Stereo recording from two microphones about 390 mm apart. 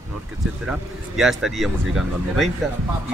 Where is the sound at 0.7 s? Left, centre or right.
Centre.